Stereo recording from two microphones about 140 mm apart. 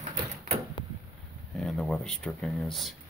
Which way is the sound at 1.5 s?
Centre (ahead or behind).